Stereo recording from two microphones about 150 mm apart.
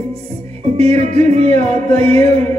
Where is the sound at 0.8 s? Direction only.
50° right (ahead or behind).